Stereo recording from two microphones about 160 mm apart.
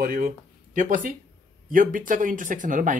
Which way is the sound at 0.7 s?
55° right (ahead or behind).